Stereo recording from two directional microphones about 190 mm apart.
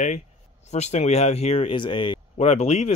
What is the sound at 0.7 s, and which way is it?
Speech, 35° left (ahead or behind).